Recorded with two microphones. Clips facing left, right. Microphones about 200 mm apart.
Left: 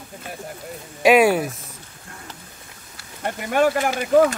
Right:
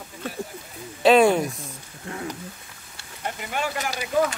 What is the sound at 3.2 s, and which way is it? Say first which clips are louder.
Speech: left 9 dB; 50° left (ahead or behind).